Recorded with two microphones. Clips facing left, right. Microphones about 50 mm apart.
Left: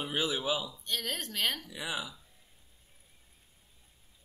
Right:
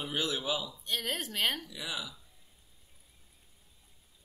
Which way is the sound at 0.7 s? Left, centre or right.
Centre.